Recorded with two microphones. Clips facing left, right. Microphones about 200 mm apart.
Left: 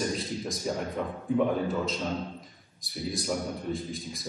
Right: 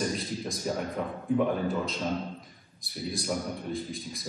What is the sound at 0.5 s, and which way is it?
Speech, centre (ahead or behind).